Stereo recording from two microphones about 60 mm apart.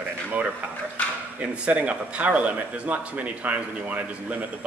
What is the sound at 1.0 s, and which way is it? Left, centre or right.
Speech, left.